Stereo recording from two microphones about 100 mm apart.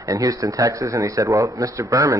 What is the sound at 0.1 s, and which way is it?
Speech, 35° right (ahead or behind).